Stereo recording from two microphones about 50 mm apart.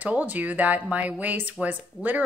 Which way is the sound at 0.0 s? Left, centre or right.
Right.